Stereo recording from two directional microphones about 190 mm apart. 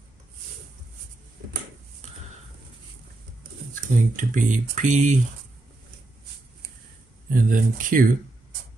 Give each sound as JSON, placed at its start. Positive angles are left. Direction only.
{"t": 3.7, "sound": "speech", "side_deg": -45}
{"t": 7.4, "sound": "speech", "side_deg": -45}